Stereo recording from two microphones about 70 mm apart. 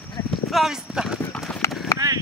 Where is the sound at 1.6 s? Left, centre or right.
Left.